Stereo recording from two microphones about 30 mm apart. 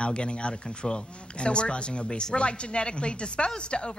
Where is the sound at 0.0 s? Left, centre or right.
Left.